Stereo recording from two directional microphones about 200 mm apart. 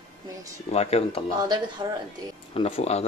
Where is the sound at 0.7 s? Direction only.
30° left (ahead or behind).